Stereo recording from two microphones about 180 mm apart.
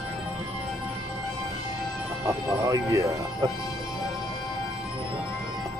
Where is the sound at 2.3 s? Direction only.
20° right (ahead or behind).